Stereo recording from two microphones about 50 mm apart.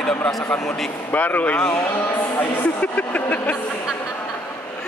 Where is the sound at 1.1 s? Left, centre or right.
Left.